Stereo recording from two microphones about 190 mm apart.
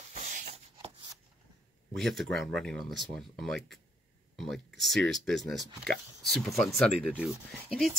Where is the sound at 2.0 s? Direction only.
Centre (ahead or behind).